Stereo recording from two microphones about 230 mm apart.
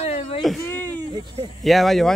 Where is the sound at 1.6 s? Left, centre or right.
Centre.